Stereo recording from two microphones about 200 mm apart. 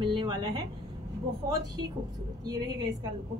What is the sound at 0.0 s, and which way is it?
Speech, 25° right (ahead or behind).